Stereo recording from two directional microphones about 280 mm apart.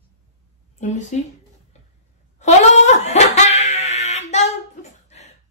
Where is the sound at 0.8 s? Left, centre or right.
Left.